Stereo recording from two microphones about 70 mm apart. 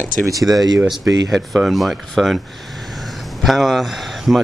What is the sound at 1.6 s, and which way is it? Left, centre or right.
Speech, centre.